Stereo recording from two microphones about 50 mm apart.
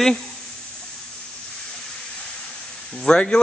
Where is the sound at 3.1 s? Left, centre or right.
Centre.